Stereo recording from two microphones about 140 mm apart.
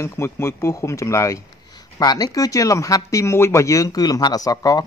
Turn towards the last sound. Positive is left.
turn(degrees=25)  # may be behind; listen again after turning